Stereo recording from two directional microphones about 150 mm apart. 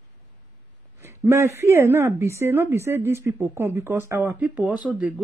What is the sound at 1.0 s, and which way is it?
A woman's voice, 15° right (ahead or behind).